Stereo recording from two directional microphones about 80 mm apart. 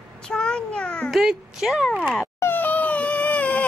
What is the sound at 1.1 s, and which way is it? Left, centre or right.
Speech, centre.